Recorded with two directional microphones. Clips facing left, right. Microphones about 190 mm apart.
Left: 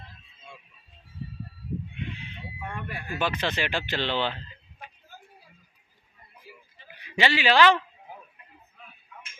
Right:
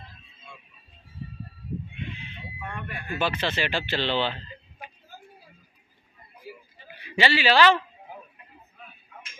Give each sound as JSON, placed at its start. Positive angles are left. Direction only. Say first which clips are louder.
{"t": 3.2, "sound": "speech", "louder": "right 1 dB", "side_deg": 15}
{"t": 7.0, "sound": "speech", "louder": "right 1 dB", "side_deg": 15}